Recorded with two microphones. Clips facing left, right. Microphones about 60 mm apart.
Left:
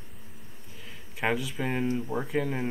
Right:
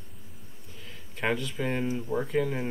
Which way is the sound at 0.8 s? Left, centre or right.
Centre.